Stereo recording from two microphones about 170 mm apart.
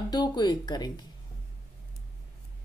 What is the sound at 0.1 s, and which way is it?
Speech, 25° left (ahead or behind).